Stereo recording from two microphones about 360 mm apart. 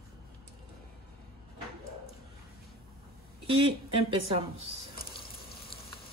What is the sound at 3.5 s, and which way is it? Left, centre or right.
Speech, centre.